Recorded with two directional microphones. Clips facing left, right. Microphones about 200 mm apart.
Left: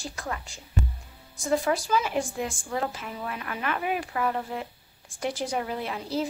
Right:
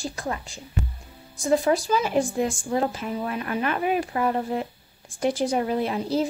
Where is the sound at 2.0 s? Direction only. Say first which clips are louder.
Right 6 dB; 35° right (ahead or behind).